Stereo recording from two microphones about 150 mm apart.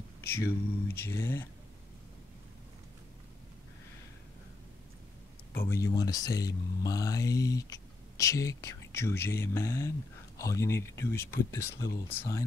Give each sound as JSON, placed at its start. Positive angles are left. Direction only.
{"t": 0.2, "sound": "speech", "side_deg": 15}
{"t": 5.5, "sound": "speech", "side_deg": 15}